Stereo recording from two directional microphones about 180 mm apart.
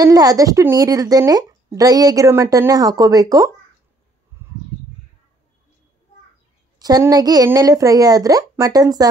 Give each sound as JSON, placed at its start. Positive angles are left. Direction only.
{"t": 0.0, "sound": "speech", "side_deg": -20}
{"t": 6.8, "sound": "speech", "side_deg": -20}